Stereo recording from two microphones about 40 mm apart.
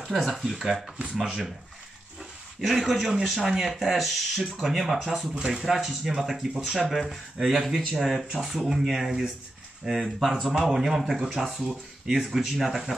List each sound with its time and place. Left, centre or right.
0.1 s speech: centre
2.6 s speech: centre
9.9 s speech: right
10.2 s speech: centre